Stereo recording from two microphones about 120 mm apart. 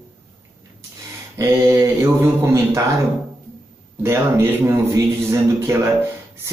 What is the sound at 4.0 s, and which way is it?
Speech, 20° right (ahead or behind).